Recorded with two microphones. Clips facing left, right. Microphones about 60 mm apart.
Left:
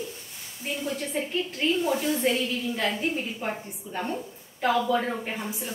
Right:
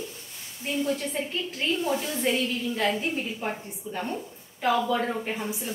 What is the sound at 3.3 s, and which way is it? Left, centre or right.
A woman's voice, centre.